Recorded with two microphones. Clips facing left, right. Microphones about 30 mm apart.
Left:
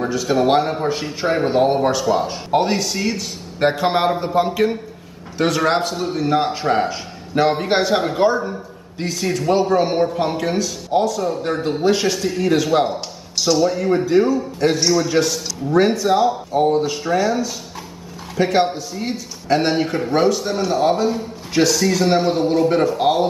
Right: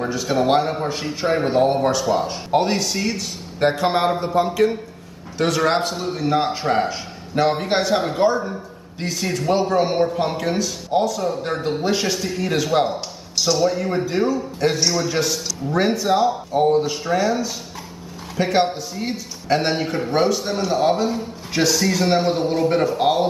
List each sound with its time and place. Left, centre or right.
0.0 s a man's voice: centre